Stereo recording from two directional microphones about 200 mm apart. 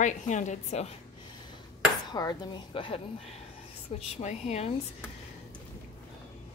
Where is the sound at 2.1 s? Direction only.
20° left (ahead or behind).